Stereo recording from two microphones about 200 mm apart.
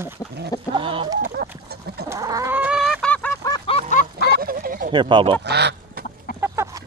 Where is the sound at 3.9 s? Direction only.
40° left (ahead or behind).